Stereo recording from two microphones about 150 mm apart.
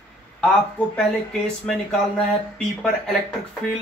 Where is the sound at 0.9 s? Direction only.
5° left (ahead or behind).